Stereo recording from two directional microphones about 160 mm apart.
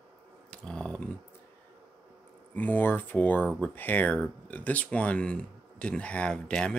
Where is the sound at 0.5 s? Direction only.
5° left (ahead or behind).